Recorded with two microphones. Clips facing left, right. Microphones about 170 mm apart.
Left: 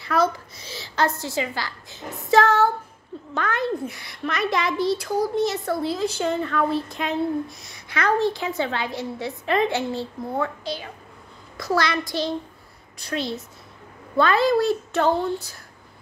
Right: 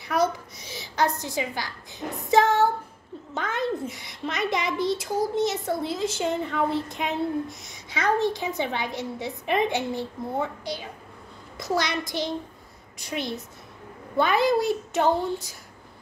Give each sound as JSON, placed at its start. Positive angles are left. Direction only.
{"t": 0.0, "sound": "a woman's voice", "side_deg": -20}
{"t": 11.5, "sound": "a woman's voice", "side_deg": -20}